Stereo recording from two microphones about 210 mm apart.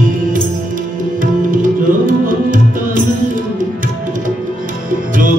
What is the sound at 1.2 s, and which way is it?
Tabla, 40° right (ahead or behind).